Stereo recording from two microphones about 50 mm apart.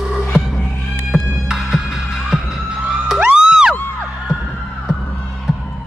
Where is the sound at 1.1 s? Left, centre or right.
Centre.